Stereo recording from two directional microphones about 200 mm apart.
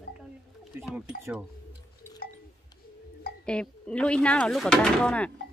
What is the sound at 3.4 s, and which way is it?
Speech, 5° left (ahead or behind).